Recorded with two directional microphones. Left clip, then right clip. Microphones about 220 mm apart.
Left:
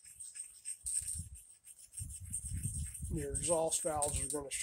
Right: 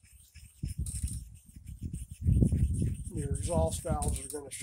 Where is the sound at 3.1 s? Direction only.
15° right (ahead or behind).